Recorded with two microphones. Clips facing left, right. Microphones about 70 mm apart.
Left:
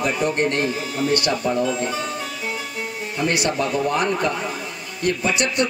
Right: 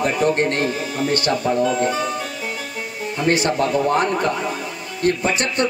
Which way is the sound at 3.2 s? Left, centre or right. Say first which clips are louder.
Right 4 dB; right.